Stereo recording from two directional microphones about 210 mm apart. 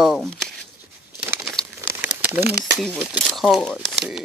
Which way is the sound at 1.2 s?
10° right (ahead or behind).